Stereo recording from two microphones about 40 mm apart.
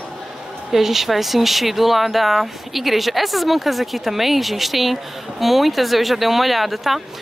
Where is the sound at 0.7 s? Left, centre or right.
Centre.